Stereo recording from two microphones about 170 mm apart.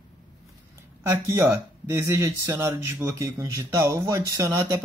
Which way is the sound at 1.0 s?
15° right (ahead or behind).